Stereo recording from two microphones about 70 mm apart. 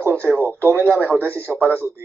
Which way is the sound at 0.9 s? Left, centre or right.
Left.